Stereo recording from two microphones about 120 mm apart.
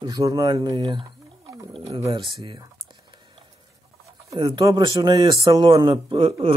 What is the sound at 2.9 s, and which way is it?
Typing, 40° right (ahead or behind).